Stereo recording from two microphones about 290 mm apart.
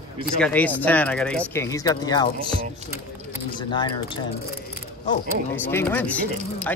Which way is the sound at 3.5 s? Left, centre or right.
Centre.